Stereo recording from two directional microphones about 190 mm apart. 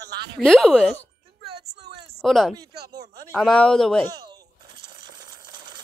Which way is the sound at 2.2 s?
Centre (ahead or behind).